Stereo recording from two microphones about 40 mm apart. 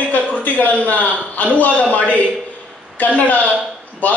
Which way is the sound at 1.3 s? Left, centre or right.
Left.